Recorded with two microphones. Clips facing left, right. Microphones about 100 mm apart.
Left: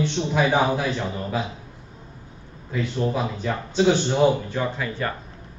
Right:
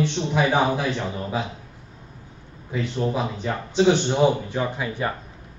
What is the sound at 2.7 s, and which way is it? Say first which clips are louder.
A man's voice: even; 15° right (ahead or behind).